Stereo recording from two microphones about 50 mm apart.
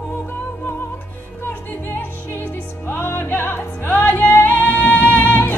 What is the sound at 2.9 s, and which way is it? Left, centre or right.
Music, left.